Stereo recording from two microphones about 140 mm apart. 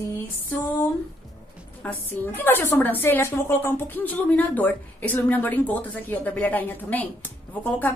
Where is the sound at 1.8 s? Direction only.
15° left (ahead or behind).